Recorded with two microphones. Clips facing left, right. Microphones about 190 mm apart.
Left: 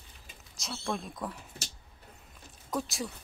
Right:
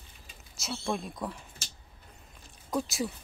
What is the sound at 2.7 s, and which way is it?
Speech, centre (ahead or behind).